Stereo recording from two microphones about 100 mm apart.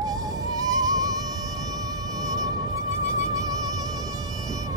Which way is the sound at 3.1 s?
35° right (ahead or behind).